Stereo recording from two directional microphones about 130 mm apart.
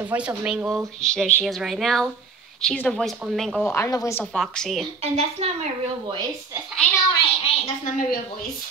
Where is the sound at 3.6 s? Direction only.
20° left (ahead or behind).